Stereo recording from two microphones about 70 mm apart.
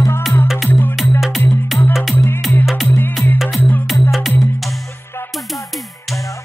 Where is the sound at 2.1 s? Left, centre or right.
Left.